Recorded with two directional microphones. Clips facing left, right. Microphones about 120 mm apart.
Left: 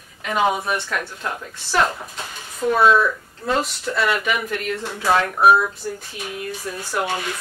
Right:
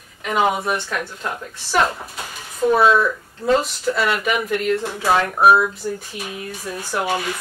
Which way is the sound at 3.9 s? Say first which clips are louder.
Even; centre (ahead or behind).